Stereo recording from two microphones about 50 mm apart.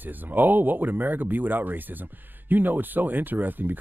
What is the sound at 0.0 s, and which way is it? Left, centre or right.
Speech, right.